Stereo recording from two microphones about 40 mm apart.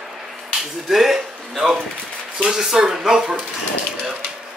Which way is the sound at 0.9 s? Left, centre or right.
Centre.